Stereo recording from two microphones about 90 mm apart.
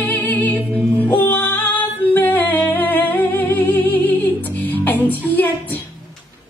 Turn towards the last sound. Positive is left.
turn(degrees=20)  # may be behind; listen again after turning